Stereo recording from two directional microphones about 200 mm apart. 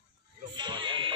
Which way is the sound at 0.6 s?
25° right (ahead or behind).